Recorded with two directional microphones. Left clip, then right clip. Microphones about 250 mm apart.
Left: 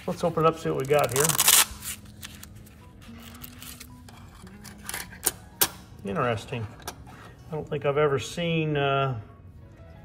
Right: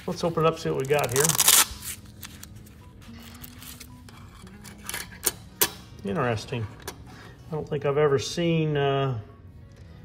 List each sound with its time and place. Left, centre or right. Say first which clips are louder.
0.0 s speech: left 1 dB; centre
3.1 s music: even; centre
6.0 s speech: even; centre